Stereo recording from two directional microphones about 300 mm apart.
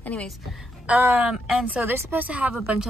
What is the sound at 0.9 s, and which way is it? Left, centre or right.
Speech, centre.